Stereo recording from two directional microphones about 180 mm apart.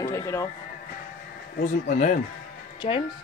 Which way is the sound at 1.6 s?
40° left (ahead or behind).